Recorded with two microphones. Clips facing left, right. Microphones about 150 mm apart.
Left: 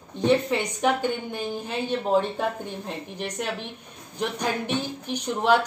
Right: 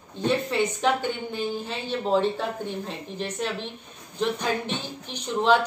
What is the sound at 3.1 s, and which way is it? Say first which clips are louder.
Speech: right 2 dB; 15° left (ahead or behind).